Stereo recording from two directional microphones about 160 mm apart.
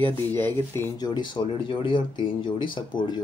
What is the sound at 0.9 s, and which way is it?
Speech, 25° left (ahead or behind).